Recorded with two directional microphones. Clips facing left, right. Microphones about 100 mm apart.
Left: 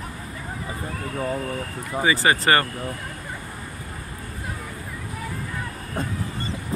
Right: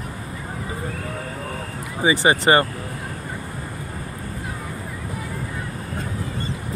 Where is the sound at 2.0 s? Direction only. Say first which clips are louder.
Right 3 dB; 25° right (ahead or behind).